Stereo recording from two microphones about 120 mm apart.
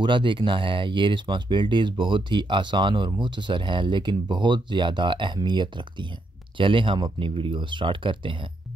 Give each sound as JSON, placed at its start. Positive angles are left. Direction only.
{"t": 0.0, "sound": "speech", "side_deg": -40}